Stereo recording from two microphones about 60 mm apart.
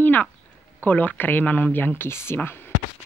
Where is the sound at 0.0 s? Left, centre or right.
Left.